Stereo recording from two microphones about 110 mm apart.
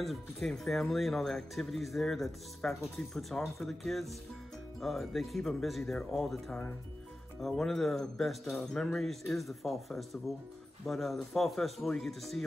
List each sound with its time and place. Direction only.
0.0 s speech: centre (ahead or behind)